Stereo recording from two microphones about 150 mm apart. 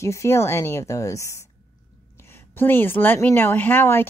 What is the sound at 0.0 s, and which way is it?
A woman's voice, 20° left (ahead or behind).